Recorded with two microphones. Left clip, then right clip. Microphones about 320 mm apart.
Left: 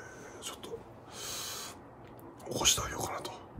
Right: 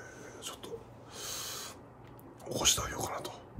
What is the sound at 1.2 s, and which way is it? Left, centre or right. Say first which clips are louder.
Owl: even; centre.